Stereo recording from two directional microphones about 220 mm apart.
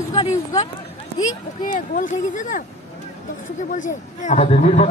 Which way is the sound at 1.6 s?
35° left (ahead or behind).